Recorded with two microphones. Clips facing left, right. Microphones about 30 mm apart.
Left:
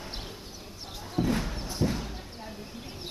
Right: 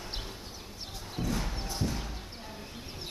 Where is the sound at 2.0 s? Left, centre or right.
Centre.